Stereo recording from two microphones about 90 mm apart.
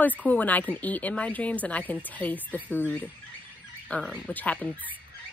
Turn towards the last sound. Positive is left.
turn(degrees=15)  # may be behind; listen again after turning